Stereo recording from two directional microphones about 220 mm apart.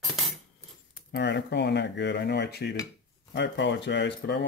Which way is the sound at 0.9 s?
55° left (ahead or behind).